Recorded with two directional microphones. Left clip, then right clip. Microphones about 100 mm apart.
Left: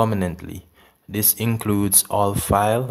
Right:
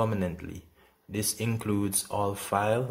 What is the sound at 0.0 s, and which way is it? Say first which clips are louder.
Speech: left 8 dB; 30° left (ahead or behind).